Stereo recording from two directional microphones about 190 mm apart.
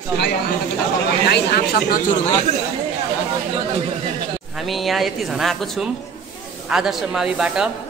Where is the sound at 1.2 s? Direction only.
55° left (ahead or behind).